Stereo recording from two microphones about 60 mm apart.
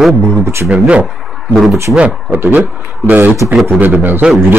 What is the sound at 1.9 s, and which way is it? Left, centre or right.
Speech, right.